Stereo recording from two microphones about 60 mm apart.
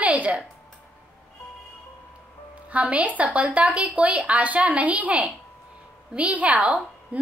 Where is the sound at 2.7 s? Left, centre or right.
Right.